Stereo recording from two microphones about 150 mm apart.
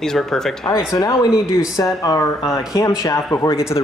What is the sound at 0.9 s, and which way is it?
Speech, 25° left (ahead or behind).